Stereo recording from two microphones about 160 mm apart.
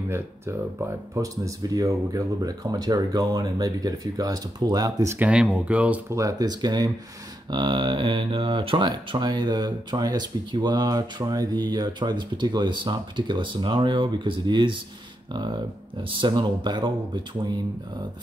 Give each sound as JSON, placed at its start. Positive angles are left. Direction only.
{"t": 0.1, "sound": "speech", "side_deg": -15}
{"t": 5.2, "sound": "speech", "side_deg": -5}
{"t": 6.1, "sound": "speech", "side_deg": -20}